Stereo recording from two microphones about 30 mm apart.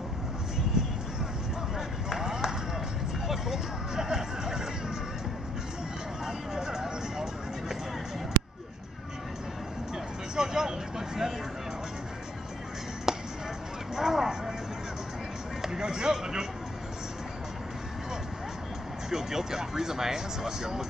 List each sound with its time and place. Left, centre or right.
0.8 s vehicle: right
2.0 s run: centre
3.3 s music: centre
6.2 s vehicle: right
10.3 s vehicle: right
13.1 s music: centre
13.9 s clip-clop: centre
15.6 s music: right
19.0 s a sound: centre